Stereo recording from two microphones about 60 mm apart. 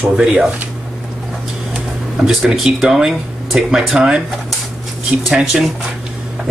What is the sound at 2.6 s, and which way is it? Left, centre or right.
Speech, centre.